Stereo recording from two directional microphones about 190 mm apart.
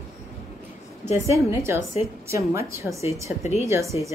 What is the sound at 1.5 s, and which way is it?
A woman's voice, 15° right (ahead or behind).